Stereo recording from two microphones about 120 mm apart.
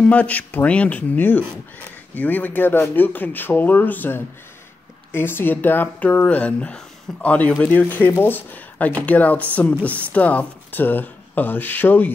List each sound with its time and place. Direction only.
0.0 s speech: 10° left (ahead or behind)